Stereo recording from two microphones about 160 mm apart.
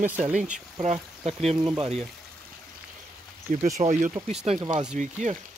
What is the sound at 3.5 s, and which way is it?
Speech, 60° right (ahead or behind).